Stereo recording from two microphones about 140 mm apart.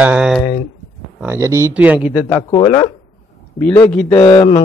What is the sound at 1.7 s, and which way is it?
Speech, 10° right (ahead or behind).